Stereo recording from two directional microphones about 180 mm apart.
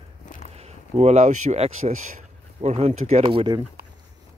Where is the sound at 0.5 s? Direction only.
35° right (ahead or behind).